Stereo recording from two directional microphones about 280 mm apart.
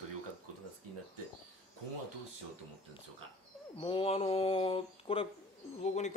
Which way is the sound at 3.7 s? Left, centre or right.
Centre.